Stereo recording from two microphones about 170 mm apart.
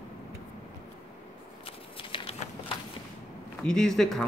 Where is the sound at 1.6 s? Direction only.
35° left (ahead or behind).